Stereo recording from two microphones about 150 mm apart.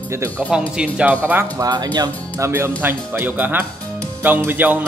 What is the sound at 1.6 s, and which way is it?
Speech, 25° right (ahead or behind).